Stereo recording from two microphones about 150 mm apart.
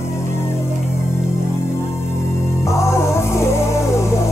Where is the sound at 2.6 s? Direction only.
20° left (ahead or behind).